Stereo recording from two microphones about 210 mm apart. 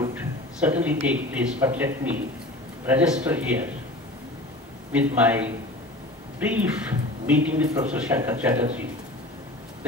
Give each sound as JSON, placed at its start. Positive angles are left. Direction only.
{"t": 0.0, "sound": "a man's voice", "side_deg": -10}
{"t": 4.9, "sound": "a man's voice", "side_deg": -5}